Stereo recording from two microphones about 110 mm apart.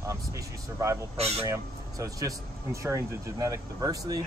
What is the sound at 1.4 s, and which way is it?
Speech, 30° right (ahead or behind).